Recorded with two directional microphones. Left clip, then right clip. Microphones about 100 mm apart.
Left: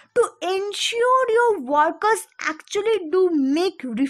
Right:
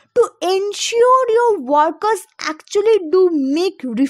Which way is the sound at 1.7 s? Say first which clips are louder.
Right 4 dB; 35° right (ahead or behind).